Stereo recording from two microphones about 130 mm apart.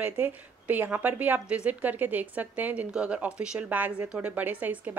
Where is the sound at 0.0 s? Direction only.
15° right (ahead or behind).